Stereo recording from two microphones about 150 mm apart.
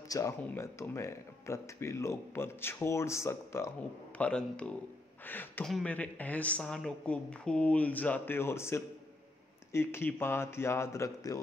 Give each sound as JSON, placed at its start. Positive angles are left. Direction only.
{"t": 0.4, "sound": "speech", "side_deg": 20}
{"t": 4.2, "sound": "speech", "side_deg": 5}